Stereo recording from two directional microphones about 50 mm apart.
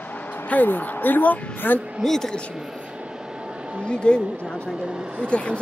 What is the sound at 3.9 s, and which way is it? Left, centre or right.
Speech, centre.